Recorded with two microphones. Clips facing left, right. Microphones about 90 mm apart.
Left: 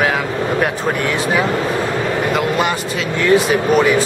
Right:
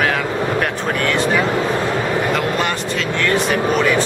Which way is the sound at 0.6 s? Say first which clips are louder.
Left 2 dB; 5° left (ahead or behind).